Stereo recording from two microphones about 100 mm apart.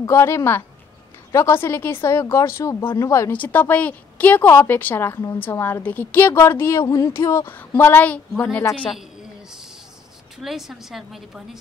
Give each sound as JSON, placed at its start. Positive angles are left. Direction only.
{"t": 0.0, "sound": "a woman's voice", "side_deg": 25}
{"t": 3.3, "sound": "a woman's voice", "side_deg": 20}
{"t": 6.8, "sound": "speech", "side_deg": 40}
{"t": 7.1, "sound": "a woman's voice", "side_deg": 30}
{"t": 10.4, "sound": "a woman's voice", "side_deg": -5}